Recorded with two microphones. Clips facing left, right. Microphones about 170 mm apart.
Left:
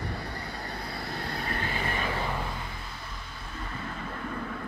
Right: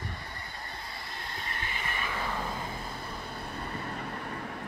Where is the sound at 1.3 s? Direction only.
65° left (ahead or behind); by 1.9 s 50° left (ahead or behind).